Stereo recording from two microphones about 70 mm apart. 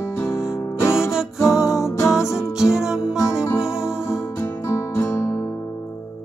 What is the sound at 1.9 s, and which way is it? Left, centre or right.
Music, left.